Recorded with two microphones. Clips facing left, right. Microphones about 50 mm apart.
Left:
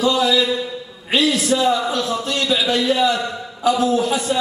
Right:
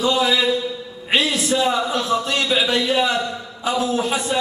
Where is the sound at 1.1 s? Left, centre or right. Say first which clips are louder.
Left 2 dB; right.